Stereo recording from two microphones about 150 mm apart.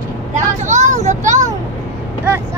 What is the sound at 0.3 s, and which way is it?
Vehicle, 55° right (ahead or behind).